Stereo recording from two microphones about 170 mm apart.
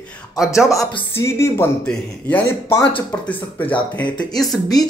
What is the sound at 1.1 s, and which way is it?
Speech, 15° left (ahead or behind).